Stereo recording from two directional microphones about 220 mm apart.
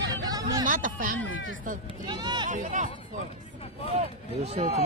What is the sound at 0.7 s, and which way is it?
Speech, 35° right (ahead or behind).